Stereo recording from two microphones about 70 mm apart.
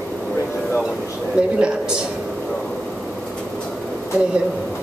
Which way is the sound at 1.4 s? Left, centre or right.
Centre.